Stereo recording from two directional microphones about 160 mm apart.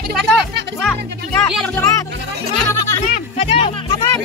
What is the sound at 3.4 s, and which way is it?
Speech, 40° left (ahead or behind).